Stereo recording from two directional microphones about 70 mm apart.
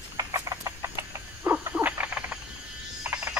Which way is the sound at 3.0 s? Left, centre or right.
Right.